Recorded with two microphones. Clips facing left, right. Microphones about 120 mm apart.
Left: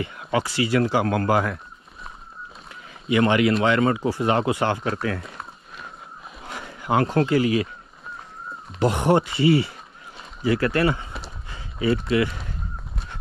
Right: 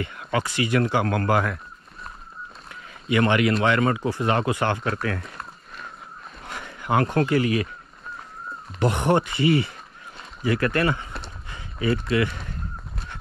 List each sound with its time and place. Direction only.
0.0 s a sound: 25° left (ahead or behind)
0.7 s speech: 25° left (ahead or behind)
2.7 s a sound: 25° left (ahead or behind)
3.7 s speech: 25° left (ahead or behind)
6.5 s speech: 25° left (ahead or behind)
8.7 s speech: 20° left (ahead or behind)